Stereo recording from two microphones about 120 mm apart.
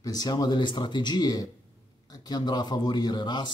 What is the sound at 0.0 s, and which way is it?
Speech, 30° left (ahead or behind).